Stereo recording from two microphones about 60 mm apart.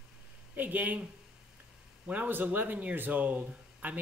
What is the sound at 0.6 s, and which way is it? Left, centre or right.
Speech, right.